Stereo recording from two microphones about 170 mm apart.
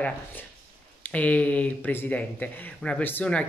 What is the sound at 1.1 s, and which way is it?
Speech, 10° left (ahead or behind).